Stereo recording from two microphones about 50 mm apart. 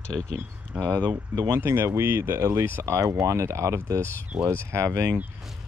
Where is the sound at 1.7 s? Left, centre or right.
Right.